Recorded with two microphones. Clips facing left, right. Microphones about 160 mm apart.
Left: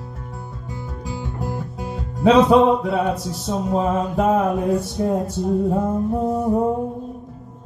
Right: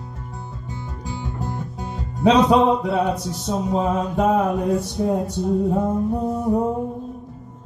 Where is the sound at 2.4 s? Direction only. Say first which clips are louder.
Left 2 dB; centre (ahead or behind).